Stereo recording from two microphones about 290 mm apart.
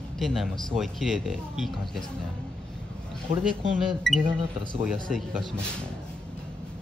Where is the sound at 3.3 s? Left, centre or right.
Right.